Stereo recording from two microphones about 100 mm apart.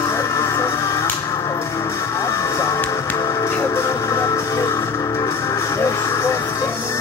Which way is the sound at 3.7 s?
30° left (ahead or behind).